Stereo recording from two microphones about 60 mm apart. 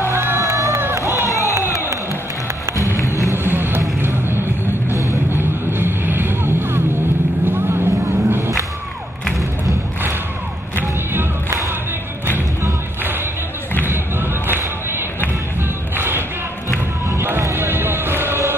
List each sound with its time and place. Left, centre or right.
0.1 s crowd: right
0.4 s crowd: right
0.7 s run: right
1.2 s a sound: left
3.0 s run: left
3.4 s vehicle: right
13.8 s a sound: right
16.0 s music: right
17.2 s a sound: right